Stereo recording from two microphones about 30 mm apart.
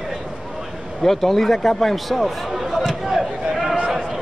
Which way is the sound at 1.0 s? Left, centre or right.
Centre.